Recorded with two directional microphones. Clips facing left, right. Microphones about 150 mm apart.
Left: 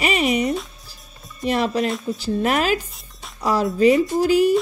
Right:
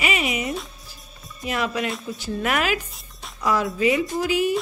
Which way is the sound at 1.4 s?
35° left (ahead or behind).